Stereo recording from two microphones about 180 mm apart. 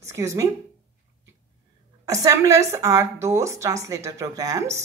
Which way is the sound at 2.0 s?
20° right (ahead or behind).